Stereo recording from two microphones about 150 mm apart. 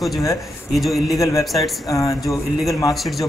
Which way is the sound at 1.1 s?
20° left (ahead or behind).